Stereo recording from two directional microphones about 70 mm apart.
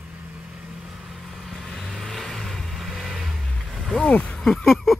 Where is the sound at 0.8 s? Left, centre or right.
Centre.